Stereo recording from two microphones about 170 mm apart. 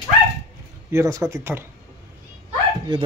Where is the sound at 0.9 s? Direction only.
15° right (ahead or behind).